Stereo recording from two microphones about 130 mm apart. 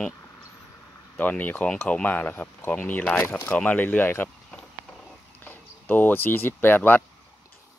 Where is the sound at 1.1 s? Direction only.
10° left (ahead or behind).